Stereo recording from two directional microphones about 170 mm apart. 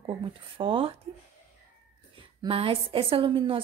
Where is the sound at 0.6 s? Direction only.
30° right (ahead or behind).